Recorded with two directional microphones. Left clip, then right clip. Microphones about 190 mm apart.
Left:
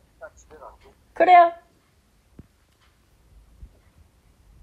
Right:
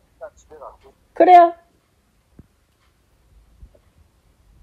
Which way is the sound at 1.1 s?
50° right (ahead or behind).